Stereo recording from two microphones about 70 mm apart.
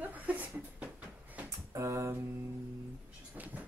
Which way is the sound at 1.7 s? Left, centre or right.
Right.